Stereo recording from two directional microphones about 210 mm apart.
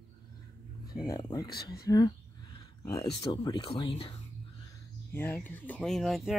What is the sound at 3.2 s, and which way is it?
Speech, 20° left (ahead or behind).